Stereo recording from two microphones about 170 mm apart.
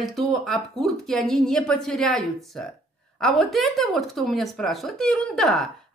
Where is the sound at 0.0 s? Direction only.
Centre (ahead or behind).